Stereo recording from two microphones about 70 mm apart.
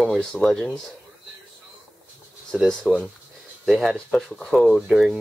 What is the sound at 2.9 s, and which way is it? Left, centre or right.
Speech, centre.